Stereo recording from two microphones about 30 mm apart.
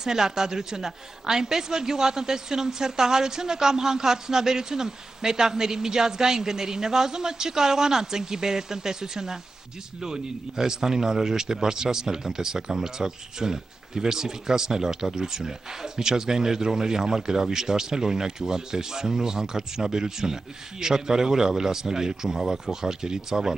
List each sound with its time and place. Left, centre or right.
0.0 s a man's voice: centre